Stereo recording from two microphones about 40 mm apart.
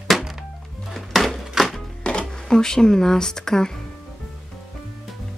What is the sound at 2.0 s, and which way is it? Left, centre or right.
Speech, left.